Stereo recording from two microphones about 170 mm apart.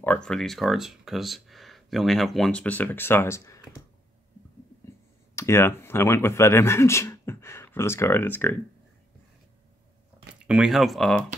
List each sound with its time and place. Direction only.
0.0 s speech: 5° left (ahead or behind)
5.3 s speech: 15° left (ahead or behind)
10.4 s speech: 5° right (ahead or behind)